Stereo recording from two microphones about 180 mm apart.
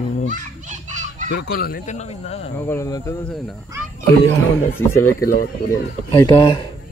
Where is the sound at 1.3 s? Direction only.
60° left (ahead or behind); by 2.5 s 35° left (ahead or behind).